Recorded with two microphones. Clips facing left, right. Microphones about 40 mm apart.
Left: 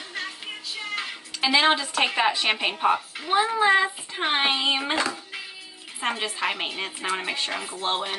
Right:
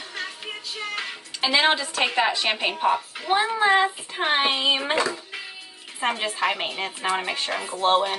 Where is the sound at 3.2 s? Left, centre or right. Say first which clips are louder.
Even; centre.